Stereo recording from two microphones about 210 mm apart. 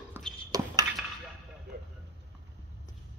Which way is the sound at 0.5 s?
15° right (ahead or behind).